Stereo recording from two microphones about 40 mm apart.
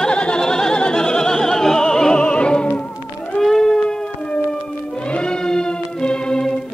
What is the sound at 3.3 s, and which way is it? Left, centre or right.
Music, centre.